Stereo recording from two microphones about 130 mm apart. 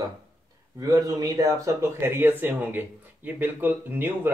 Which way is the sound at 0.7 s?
30° right (ahead or behind).